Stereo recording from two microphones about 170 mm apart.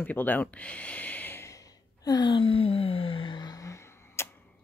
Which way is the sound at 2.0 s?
25° left (ahead or behind).